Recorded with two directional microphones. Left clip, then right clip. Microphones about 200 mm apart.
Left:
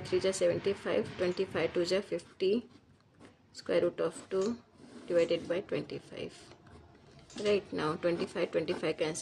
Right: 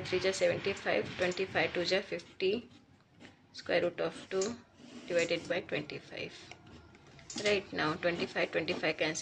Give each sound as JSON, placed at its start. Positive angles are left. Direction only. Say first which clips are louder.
{"t": 0.0, "sound": "speech", "louder": "left 1 dB", "side_deg": 70}
{"t": 7.4, "sound": "speech", "louder": "left 1 dB", "side_deg": 60}